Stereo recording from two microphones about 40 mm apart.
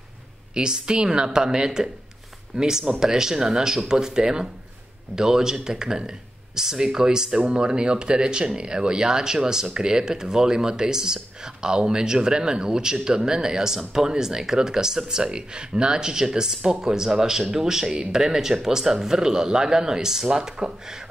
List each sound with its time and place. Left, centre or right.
0.6 s speech: right